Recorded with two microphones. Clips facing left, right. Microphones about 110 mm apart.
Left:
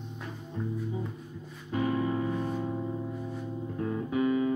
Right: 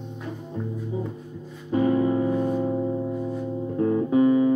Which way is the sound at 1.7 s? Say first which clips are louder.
Right 8 dB; 30° right (ahead or behind).